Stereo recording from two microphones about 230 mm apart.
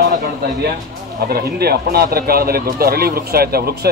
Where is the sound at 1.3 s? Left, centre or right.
Right.